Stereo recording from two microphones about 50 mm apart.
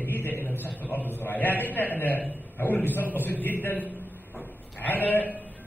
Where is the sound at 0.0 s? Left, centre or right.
Left.